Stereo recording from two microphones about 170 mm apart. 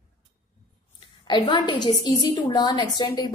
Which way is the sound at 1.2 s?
25° left (ahead or behind).